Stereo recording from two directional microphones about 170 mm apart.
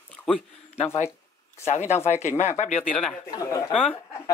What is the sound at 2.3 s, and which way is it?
Speech, 40° left (ahead or behind).